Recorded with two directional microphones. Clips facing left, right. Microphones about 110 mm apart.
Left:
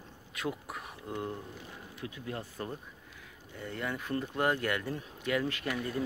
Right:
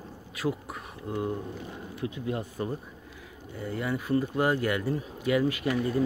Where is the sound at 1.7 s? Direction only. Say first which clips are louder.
Right 8 dB; 25° right (ahead or behind).